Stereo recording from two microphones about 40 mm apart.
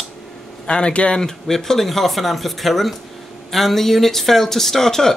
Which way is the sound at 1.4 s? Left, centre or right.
Centre.